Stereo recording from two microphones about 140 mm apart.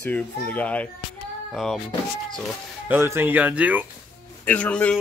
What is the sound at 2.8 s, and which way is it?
Speech, 15° right (ahead or behind).